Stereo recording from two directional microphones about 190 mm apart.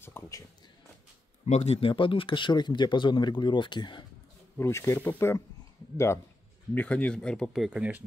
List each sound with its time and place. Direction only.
0.0 s a sound: 10° left (ahead or behind)
1.4 s speech: 35° left (ahead or behind)
4.6 s speech: 15° left (ahead or behind)
6.7 s speech: 10° left (ahead or behind)